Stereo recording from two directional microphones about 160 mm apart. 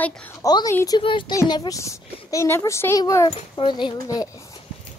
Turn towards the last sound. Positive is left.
turn(degrees=25)  # may be behind; listen again after turning